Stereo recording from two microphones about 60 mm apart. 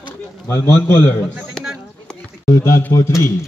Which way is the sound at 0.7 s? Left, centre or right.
Left.